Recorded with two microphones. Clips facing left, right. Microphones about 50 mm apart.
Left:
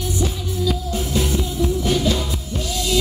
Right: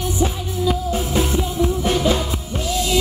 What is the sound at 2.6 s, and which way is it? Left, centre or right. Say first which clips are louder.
Music: right 4 dB; centre.